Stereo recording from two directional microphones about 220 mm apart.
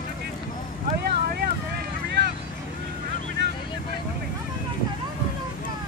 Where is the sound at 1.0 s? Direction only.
45° right (ahead or behind).